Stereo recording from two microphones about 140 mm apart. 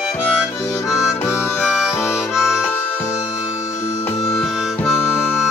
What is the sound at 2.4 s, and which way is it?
Harmonica, 5° right (ahead or behind).